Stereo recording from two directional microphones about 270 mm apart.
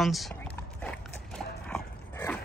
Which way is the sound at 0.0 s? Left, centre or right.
Centre.